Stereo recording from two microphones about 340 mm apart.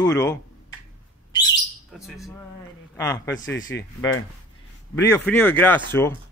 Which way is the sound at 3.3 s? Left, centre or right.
Left.